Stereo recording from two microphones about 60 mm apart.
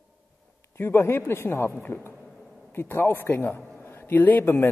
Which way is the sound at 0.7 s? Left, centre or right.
Left.